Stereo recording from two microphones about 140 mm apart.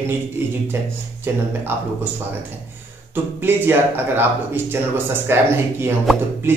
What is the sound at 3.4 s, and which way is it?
A man's voice, 15° right (ahead or behind).